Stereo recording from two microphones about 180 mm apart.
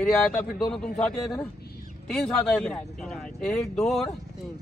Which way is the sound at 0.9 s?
Centre (ahead or behind).